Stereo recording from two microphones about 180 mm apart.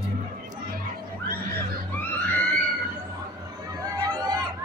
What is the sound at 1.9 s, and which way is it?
Music, 10° left (ahead or behind).